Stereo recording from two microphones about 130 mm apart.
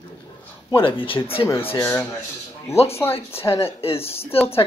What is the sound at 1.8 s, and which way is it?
Speech, 20° left (ahead or behind).